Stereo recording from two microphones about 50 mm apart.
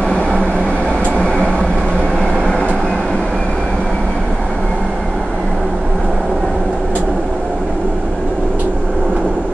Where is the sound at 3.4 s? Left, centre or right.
Centre.